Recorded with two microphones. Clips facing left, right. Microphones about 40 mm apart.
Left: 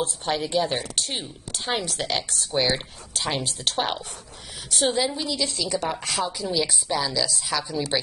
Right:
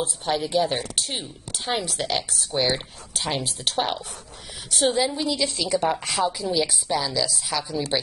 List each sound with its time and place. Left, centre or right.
0.0 s speech: centre